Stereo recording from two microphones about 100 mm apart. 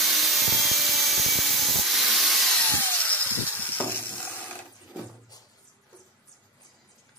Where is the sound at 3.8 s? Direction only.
20° left (ahead or behind).